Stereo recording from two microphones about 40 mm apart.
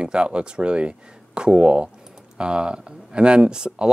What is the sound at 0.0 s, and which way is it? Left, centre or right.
Speech, right.